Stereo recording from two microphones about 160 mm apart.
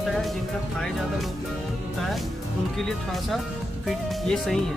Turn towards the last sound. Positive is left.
turn(degrees=0)  # may be behind; listen again after turning